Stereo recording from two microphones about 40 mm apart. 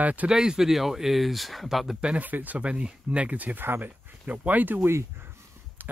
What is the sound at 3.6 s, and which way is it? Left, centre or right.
Speech, right.